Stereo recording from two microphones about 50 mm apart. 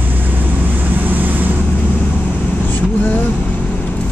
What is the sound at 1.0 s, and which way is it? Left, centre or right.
Vehicle, right.